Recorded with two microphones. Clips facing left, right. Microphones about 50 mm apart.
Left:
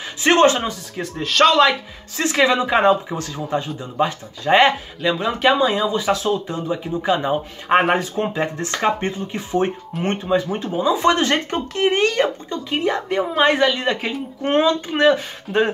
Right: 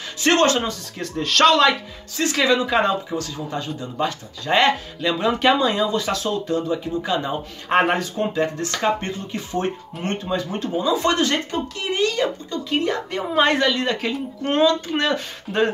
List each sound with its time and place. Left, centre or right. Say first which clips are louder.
0.2 s speech: left 3 dB; centre
2.1 s speech: left 2 dB; left
5.1 s speech: even; centre; by 11.3 s left
11.5 s speech: left 5 dB; left
12.4 s speech: left 1 dB; centre